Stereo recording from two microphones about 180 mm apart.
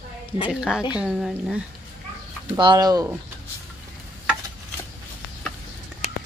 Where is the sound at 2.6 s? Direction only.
25° right (ahead or behind).